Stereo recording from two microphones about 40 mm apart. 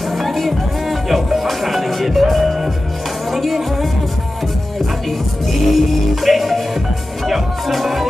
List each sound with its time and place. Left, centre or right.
0.1 s music: centre
5.7 s music: centre